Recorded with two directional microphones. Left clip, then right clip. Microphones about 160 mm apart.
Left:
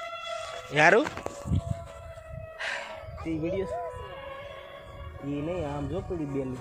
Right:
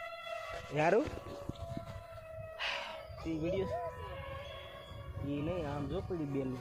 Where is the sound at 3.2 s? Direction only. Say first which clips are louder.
Left 5 dB; 15° right (ahead or behind).